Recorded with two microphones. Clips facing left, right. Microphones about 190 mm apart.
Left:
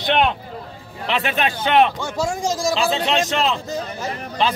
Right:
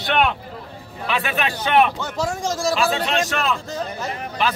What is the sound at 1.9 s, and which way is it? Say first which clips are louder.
Speech: left 1 dB; 10° left (ahead or behind).